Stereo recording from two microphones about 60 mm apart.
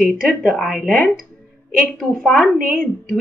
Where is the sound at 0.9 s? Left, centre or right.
Left.